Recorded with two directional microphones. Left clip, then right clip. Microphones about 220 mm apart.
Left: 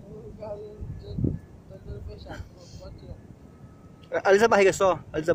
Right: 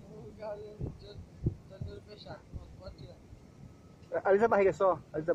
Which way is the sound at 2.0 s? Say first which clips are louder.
Left 5 dB; 10° left (ahead or behind).